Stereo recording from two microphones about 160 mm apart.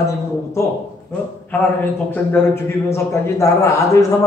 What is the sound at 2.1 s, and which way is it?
A man's voice, 15° left (ahead or behind).